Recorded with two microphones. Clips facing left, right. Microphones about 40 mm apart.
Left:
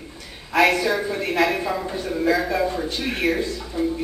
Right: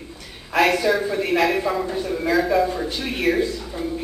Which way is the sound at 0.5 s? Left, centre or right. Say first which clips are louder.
Even; centre.